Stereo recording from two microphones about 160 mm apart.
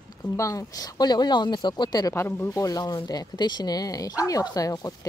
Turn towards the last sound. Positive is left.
turn(degrees=20)  # may be behind; listen again after turning